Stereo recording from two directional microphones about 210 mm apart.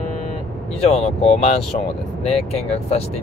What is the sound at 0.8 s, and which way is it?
Speech, 30° left (ahead or behind).